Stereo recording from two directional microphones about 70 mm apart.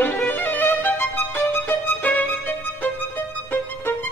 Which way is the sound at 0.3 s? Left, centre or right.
Left.